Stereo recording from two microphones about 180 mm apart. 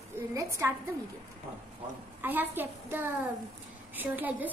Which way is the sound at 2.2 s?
10° right (ahead or behind).